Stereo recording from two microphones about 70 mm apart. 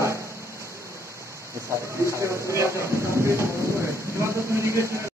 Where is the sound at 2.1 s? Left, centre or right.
Right.